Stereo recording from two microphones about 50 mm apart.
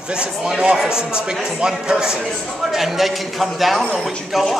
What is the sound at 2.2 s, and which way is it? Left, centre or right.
A man's voice, centre.